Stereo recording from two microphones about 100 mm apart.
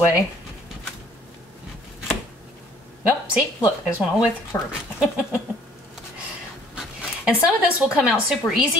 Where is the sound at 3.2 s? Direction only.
10° right (ahead or behind).